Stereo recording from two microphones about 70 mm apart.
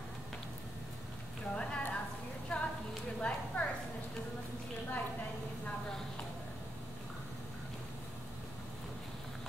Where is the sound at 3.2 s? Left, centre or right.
Centre.